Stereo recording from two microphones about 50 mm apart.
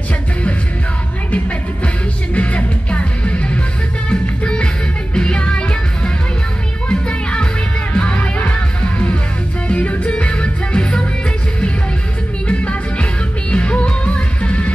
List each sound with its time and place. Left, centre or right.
2.3 s music: left
12.4 s music: left